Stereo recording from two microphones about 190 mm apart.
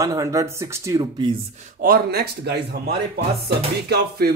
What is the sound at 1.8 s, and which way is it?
Speech, 55° right (ahead or behind).